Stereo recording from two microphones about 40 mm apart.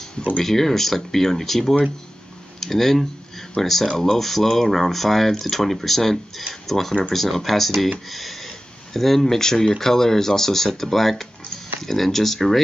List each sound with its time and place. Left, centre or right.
0.4 s speech: centre